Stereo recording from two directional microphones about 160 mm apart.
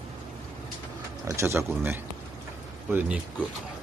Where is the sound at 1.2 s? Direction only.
20° right (ahead or behind).